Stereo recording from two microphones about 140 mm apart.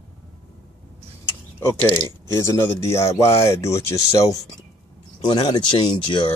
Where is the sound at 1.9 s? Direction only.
20° left (ahead or behind).